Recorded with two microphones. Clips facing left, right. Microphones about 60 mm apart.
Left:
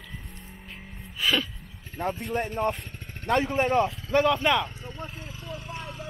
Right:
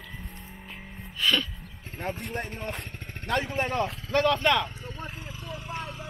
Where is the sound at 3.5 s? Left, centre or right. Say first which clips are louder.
Left 5 dB; left.